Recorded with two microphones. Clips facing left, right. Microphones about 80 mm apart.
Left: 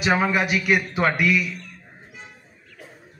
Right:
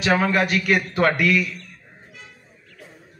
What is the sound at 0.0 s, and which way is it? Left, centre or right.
A man's voice, centre.